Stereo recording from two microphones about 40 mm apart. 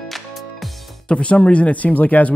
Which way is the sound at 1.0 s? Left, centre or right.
Left.